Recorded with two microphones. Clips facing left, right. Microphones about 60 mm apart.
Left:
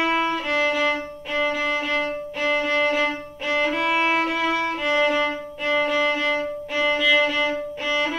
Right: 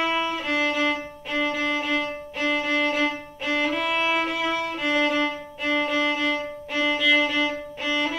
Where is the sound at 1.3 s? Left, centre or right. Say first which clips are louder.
Left 2 dB; centre.